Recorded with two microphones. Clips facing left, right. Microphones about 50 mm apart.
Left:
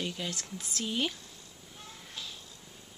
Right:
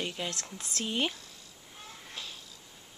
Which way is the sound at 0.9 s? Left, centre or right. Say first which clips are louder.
Right 1 dB; centre.